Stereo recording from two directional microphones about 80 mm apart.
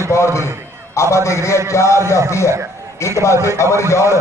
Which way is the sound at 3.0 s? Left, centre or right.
Left.